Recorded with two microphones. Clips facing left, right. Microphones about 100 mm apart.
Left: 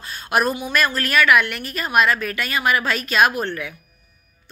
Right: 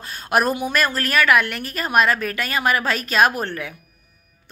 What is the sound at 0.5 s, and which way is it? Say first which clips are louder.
A woman's voice: even; 45° right (ahead or behind).